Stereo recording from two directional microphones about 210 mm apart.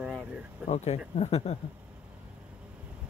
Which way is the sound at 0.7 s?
30° left (ahead or behind).